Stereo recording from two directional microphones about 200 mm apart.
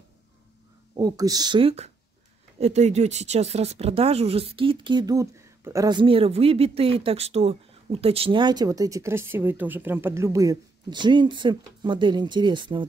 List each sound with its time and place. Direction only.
0.9 s speech: 20° right (ahead or behind)